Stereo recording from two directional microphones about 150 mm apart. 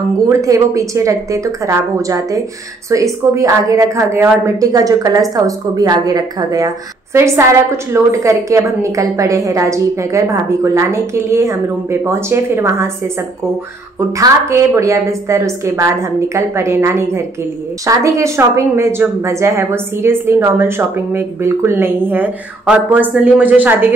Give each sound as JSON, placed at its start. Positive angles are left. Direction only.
{"t": 0.3, "sound": "a woman's voice", "side_deg": -20}
{"t": 13.9, "sound": "a woman's voice", "side_deg": -20}